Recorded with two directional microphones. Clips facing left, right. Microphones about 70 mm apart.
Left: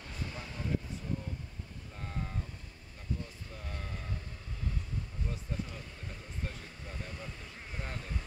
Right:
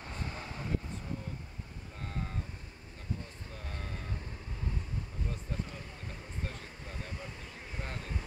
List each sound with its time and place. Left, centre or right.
0.0 s a sound: right
2.0 s vehicle: centre
6.4 s vehicle: centre
7.8 s ocean: centre